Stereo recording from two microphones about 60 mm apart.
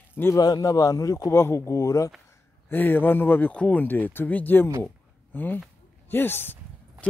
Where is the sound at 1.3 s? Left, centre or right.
Left.